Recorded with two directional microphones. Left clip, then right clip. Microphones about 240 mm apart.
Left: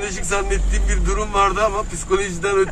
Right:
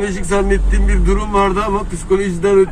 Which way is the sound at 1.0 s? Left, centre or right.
Centre.